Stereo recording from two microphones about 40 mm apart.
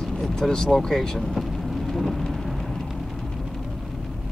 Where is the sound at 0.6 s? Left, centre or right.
Centre.